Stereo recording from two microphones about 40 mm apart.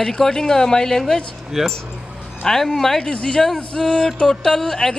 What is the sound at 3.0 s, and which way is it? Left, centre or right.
A woman's voice, left.